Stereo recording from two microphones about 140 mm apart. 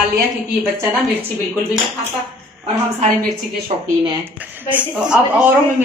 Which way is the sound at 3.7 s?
50° right (ahead or behind).